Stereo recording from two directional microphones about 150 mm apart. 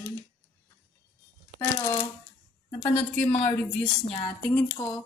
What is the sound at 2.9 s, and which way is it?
Speech, 10° left (ahead or behind).